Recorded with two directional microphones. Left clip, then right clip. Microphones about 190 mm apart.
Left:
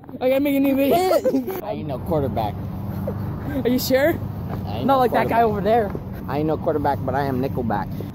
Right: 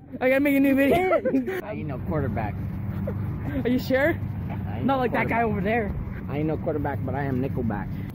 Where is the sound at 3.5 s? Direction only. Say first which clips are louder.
Left 4 dB; 5° right (ahead or behind).